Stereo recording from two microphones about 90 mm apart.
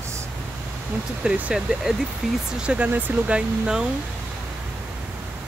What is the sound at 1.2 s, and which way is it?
Speech, 15° right (ahead or behind).